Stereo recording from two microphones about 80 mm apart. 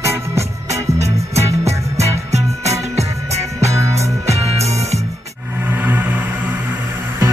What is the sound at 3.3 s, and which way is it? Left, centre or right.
Music, right.